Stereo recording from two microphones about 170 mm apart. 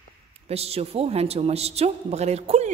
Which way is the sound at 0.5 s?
35° right (ahead or behind).